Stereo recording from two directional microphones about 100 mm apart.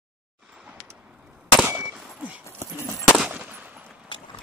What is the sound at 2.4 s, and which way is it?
Dog, 25° left (ahead or behind).